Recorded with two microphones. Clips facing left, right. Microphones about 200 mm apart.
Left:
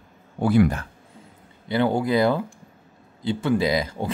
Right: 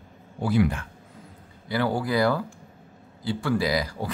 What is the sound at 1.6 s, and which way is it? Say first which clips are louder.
Speech: left 4 dB; 25° left (ahead or behind).